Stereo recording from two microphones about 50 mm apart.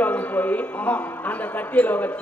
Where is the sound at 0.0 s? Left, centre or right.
Left.